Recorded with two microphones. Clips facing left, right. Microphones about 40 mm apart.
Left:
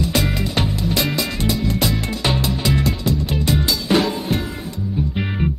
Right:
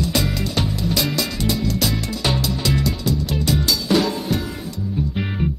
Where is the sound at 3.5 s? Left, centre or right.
Left.